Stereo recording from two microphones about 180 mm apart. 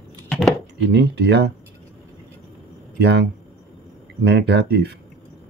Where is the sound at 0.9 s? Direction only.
70° right (ahead or behind).